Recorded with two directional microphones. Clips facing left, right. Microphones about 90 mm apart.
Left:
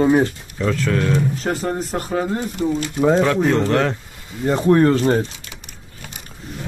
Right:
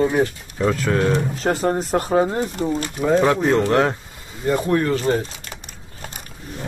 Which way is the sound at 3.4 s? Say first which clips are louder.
Even; 10° right (ahead or behind).